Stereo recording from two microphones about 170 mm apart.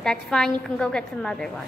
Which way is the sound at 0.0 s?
5° left (ahead or behind).